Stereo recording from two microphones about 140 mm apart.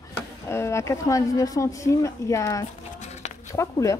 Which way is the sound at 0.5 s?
20° left (ahead or behind).